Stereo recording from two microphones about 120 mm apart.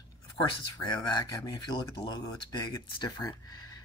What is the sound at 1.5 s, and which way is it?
Speech, 40° left (ahead or behind).